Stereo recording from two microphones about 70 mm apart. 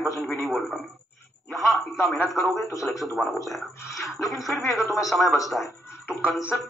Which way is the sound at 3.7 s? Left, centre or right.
Left.